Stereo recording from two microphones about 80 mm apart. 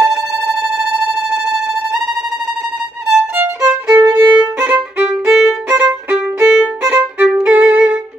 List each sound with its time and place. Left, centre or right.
0.0 s a sound: centre
3.6 s violin: right
4.4 s violin: centre
5.3 s violin: centre